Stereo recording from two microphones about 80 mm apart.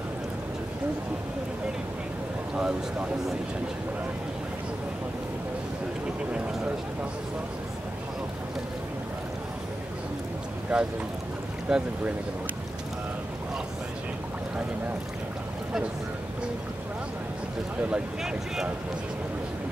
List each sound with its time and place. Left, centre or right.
2.5 s speech: centre
6.3 s speech: centre
10.7 s speech: centre
17.8 s speech: centre